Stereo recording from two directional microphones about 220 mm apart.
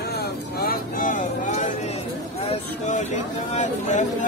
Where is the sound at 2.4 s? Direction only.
30° left (ahead or behind).